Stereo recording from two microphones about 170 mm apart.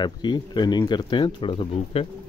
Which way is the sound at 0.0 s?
25° left (ahead or behind).